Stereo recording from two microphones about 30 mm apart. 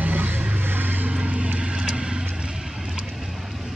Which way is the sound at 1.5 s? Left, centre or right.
Right.